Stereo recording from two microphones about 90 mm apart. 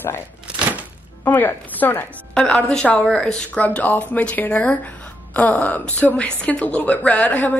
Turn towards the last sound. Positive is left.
turn(degrees=20)  # may be behind; listen again after turning